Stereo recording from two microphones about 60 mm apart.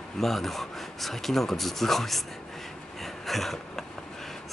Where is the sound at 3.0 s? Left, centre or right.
Centre.